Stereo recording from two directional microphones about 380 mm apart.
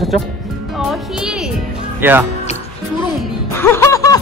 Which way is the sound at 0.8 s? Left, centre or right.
Centre.